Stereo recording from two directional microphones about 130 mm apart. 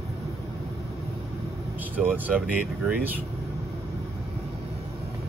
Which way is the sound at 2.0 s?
15° right (ahead or behind).